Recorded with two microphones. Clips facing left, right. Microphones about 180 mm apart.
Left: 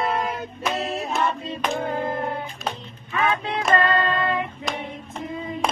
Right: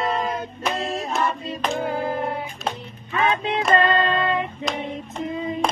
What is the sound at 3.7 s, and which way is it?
Music, 20° right (ahead or behind).